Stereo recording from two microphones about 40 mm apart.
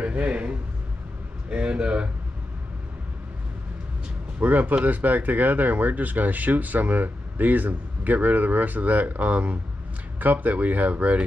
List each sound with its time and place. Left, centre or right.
0.0 s a man's voice: right
4.4 s speech: right